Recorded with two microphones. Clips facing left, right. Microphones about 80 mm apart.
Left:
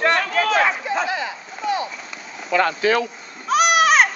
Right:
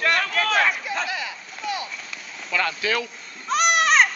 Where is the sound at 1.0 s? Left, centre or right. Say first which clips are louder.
Left 5 dB; left.